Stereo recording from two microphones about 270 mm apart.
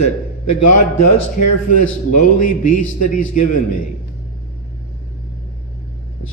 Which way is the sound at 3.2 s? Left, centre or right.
Left.